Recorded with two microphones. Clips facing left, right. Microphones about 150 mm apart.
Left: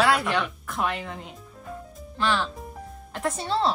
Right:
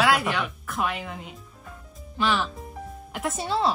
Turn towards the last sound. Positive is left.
turn(degrees=-5)  # may be behind; listen again after turning